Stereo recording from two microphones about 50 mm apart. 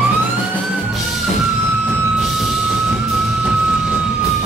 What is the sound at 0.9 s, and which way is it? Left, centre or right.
Music, centre.